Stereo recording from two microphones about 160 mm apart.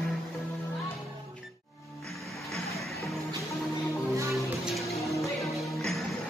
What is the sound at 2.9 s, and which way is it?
Music, 20° left (ahead or behind).